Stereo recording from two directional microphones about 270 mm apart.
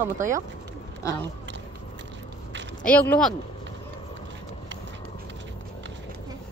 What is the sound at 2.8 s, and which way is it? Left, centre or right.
Speech, centre.